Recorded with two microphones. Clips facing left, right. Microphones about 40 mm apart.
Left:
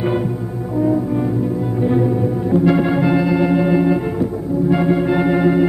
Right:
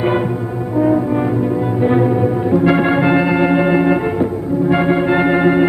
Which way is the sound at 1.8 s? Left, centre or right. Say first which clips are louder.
Right 3 dB; right.